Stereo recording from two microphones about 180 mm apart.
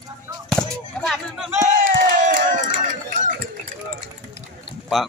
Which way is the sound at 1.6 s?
45° right (ahead or behind).